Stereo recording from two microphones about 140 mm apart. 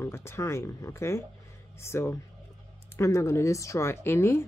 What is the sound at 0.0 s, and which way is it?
Speech, 20° left (ahead or behind).